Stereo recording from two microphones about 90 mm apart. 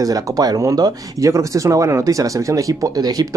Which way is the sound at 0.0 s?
45° right (ahead or behind).